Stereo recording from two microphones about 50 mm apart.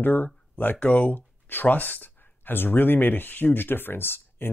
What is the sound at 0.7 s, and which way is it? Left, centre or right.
Speech, left.